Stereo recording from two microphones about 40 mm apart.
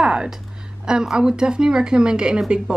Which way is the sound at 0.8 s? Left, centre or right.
Centre.